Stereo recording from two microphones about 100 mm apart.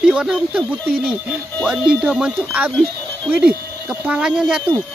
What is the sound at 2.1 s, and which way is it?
Speech, 5° right (ahead or behind).